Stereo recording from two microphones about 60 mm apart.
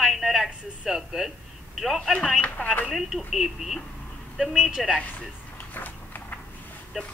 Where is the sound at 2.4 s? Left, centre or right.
Left.